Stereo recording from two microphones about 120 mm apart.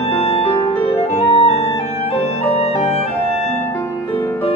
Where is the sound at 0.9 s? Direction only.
20° left (ahead or behind).